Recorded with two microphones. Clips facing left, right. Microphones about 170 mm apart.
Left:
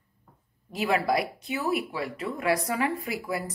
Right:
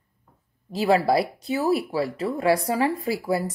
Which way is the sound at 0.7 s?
30° right (ahead or behind).